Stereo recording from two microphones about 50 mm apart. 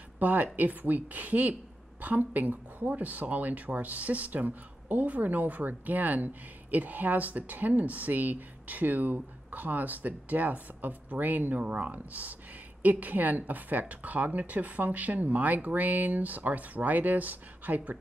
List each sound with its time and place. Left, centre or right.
0.2 s speech: right